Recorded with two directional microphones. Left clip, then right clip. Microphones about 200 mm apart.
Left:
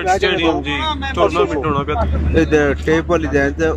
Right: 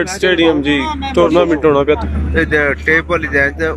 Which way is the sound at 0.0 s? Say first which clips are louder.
Right 2 dB; 30° right (ahead or behind).